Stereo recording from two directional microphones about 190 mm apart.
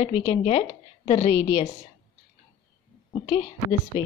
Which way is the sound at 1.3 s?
15° left (ahead or behind).